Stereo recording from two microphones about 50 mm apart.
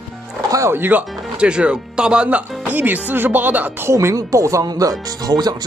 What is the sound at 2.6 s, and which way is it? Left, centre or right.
Music, right.